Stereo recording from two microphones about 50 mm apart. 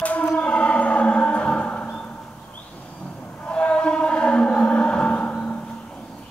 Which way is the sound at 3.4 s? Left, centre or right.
Left.